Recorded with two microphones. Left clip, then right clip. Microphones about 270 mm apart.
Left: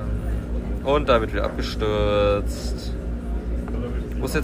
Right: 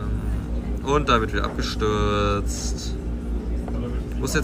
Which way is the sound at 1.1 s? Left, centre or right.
Left.